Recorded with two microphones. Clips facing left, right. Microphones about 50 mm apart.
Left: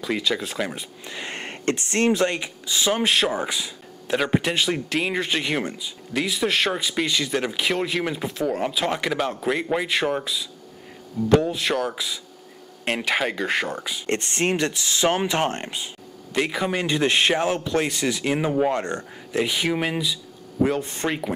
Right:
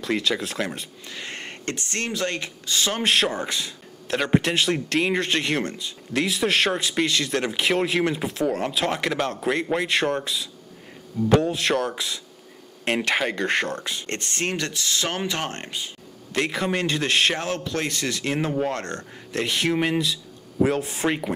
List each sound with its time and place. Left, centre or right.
0.0 s speech: centre
1.0 s speech: centre
2.3 s a man's voice: centre
14.0 s speech: left
16.3 s a man's voice: centre